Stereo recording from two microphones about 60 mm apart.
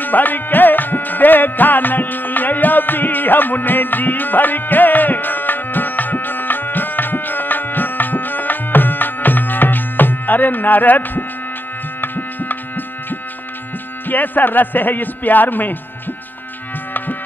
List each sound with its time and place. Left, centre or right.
0.0 s music: left
14.0 s speech: left